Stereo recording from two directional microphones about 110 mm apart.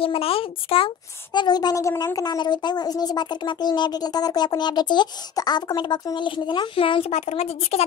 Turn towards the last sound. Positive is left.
turn(degrees=65)  # may be behind; listen again after turning